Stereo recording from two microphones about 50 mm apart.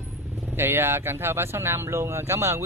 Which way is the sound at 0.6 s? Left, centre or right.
Right.